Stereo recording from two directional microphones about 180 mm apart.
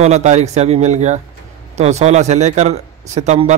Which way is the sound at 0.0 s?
40° right (ahead or behind).